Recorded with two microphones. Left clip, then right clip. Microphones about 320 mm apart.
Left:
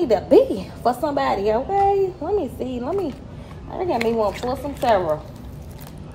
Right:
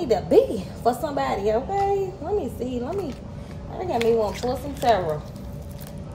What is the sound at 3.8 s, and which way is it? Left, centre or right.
Speech, left.